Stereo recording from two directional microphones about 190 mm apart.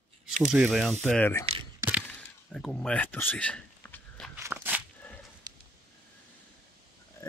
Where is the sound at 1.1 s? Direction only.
10° left (ahead or behind).